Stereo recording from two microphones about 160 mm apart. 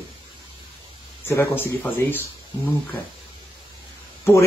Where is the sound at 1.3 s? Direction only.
15° left (ahead or behind).